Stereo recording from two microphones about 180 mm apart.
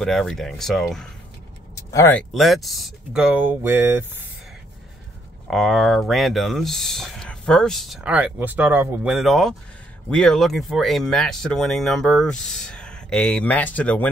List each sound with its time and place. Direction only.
0.0 s speech: centre (ahead or behind)
1.8 s vehicle: 20° left (ahead or behind)
2.1 s speech: centre (ahead or behind)
5.5 s speech: centre (ahead or behind)